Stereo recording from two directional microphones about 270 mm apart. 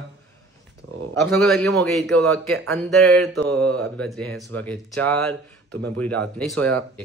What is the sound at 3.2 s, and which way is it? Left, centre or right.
Mantra, right.